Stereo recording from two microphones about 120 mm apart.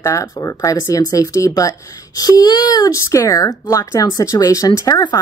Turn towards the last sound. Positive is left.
turn(degrees=30)  # may be behind; listen again after turning